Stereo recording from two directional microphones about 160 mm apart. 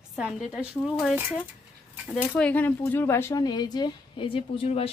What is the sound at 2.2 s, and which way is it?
Speech, 10° left (ahead or behind).